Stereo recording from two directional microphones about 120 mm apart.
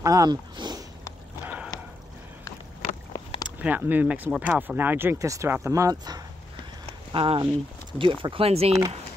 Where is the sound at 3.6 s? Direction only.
15° right (ahead or behind); by 6.3 s 35° right (ahead or behind).